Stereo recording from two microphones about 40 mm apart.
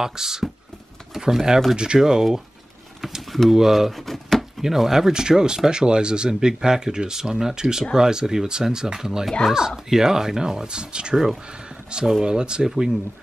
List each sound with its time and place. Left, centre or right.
0.0 s speech: centre
3.2 s speech: centre
3.5 s a sound: centre
4.6 s speech: centre
11.7 s a sound: centre
12.3 s speech: right